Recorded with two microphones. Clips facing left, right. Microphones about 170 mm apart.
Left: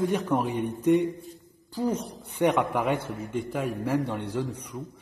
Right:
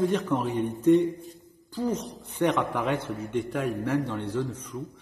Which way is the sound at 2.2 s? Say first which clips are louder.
Left 2 dB; 10° left (ahead or behind).